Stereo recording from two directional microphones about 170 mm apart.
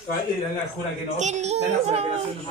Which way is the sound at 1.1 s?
45° right (ahead or behind).